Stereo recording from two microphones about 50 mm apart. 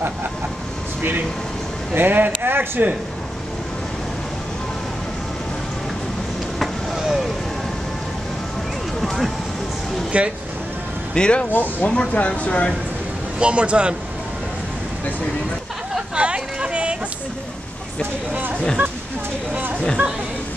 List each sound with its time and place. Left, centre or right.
2.0 s speech: right
6.6 s vehicle: centre
9.0 s a sound: centre
10.1 s speech: right
11.1 s speech: left
11.5 s speech: left
11.9 s speech: left
13.4 s speech: right
16.2 s a sound: right
18.3 s speech: right